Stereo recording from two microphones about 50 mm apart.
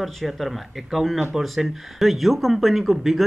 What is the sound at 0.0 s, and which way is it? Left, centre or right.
Speech, centre.